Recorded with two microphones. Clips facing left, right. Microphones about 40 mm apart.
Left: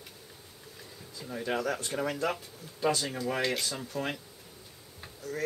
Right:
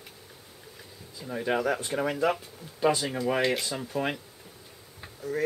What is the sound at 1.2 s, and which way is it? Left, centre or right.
Speech, centre.